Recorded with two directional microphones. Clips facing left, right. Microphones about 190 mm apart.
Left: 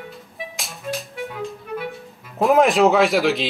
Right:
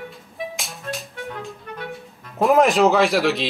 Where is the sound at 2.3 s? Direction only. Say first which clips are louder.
Even; centre (ahead or behind).